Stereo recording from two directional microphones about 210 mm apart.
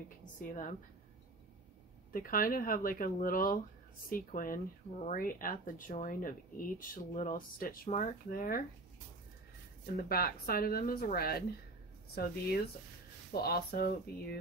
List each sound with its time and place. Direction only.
0.2 s speech: 40° left (ahead or behind)
2.1 s speech: 40° left (ahead or behind)
9.9 s speech: 45° left (ahead or behind)